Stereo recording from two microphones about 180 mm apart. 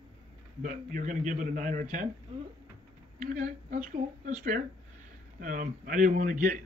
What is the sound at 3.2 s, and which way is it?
A man's voice, 45° right (ahead or behind).